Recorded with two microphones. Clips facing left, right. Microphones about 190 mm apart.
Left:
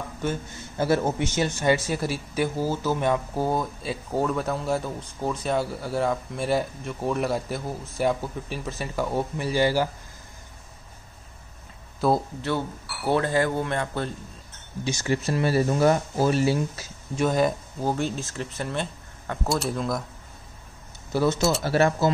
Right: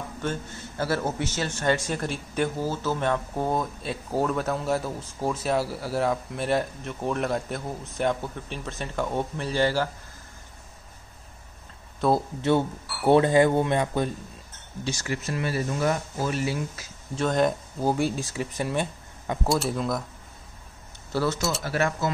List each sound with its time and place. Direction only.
0.2 s a man's voice: 15° left (ahead or behind)
12.0 s speech: 5° left (ahead or behind)
12.4 s a man's voice: 20° right (ahead or behind)
14.9 s speech: 25° left (ahead or behind)
17.1 s a man's voice: 10° left (ahead or behind)
17.8 s speech: 10° right (ahead or behind)
19.5 s speech: centre (ahead or behind)
21.1 s speech: 15° left (ahead or behind)
21.4 s speech: centre (ahead or behind)
21.6 s speech: 30° left (ahead or behind)